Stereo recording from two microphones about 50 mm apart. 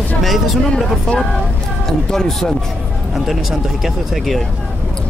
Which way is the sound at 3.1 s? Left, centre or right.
Centre.